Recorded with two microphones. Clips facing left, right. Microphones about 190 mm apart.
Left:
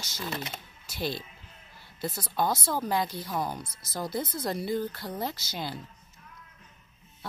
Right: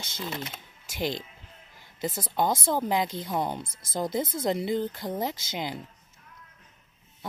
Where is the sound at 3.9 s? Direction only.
20° right (ahead or behind).